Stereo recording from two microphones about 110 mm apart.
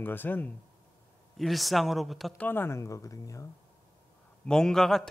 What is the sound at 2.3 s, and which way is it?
Speech, 15° left (ahead or behind).